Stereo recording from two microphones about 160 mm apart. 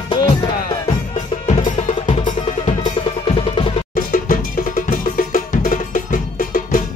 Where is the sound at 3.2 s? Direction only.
35° left (ahead or behind).